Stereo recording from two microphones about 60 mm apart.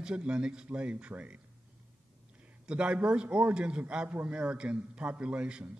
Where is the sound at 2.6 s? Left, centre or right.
Centre.